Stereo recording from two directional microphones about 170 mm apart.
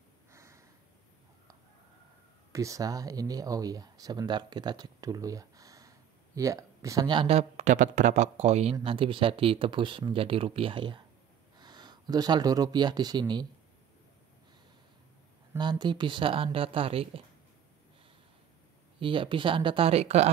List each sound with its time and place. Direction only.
0.3 s a sound: 15° right (ahead or behind)
2.5 s speech: 20° right (ahead or behind)
15.5 s speech: 25° right (ahead or behind)
18.9 s speech: 30° right (ahead or behind)